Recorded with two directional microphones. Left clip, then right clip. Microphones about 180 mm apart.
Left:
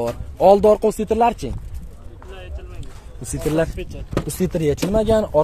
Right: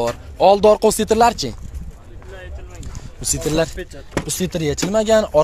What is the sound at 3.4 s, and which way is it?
Speech, 10° left (ahead or behind).